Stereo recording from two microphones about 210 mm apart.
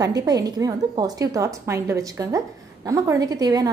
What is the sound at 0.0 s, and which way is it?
A woman's voice, 15° right (ahead or behind).